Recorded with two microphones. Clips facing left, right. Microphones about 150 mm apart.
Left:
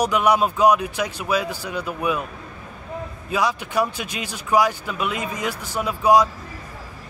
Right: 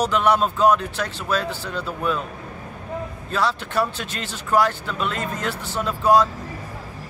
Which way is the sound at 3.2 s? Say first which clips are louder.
Left 1 dB; 10° left (ahead or behind).